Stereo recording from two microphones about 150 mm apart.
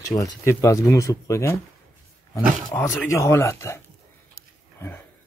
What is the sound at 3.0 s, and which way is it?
Speech, 20° left (ahead or behind).